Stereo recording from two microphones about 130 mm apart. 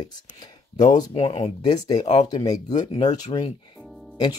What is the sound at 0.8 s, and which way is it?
Speech, 50° left (ahead or behind).